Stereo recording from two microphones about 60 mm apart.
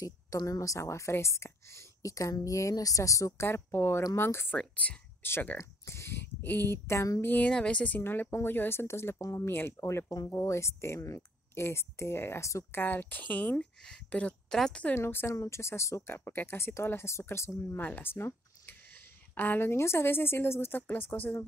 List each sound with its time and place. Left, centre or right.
0.0 s a woman's voice: left
3.4 s a woman's voice: left
4.6 s speech: left
5.2 s a woman's voice: left
5.6 s speech: left
7.2 s speech: left
8.0 s a woman's voice: left
9.8 s speech: left
10.0 s speech: left
10.3 s speech: left; by 14.8 s centre
15.0 s a woman's voice: left
15.2 s speech: left
17.7 s a sound: left
19.6 s a woman's voice: left